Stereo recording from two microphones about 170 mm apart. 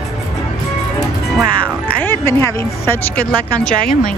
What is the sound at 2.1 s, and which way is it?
A woman's voice, 15° left (ahead or behind).